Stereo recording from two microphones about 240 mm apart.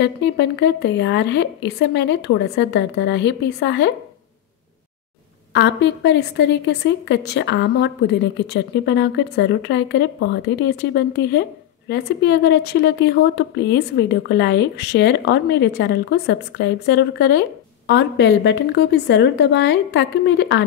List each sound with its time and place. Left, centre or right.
0.0 s speech: left
5.5 s speech: left